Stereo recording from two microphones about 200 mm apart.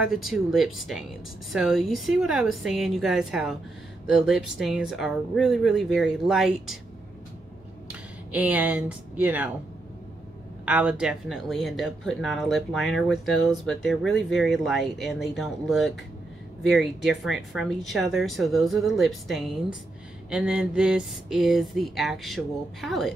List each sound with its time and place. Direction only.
0.0 s speech: centre (ahead or behind)
7.9 s speech: 5° right (ahead or behind)
10.6 s speech: 5° right (ahead or behind)